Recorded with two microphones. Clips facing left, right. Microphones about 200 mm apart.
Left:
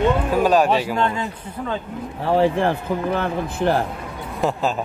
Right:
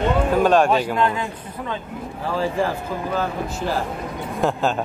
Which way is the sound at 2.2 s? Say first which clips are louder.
Left 5 dB; 60° left (ahead or behind).